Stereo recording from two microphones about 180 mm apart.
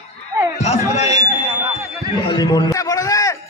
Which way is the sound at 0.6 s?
35° left (ahead or behind).